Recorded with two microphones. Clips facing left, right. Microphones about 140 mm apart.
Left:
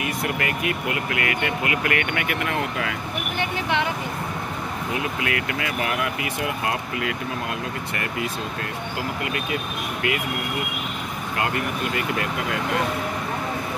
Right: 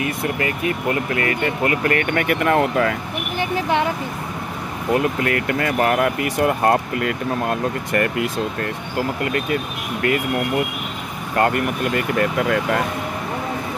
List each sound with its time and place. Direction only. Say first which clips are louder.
0.4 s speech: right 3 dB; 30° right (ahead or behind)
4.9 s speech: right 8 dB; 45° right (ahead or behind)
11.3 s speech: right 7 dB; 50° right (ahead or behind)